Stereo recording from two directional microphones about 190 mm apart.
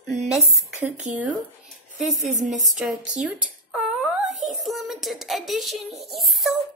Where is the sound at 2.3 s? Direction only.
40° right (ahead or behind).